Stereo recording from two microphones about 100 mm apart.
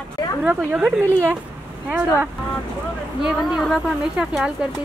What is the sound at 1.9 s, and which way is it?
Speech, 20° right (ahead or behind).